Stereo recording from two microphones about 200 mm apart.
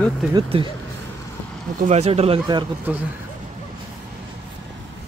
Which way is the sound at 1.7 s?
35° right (ahead or behind).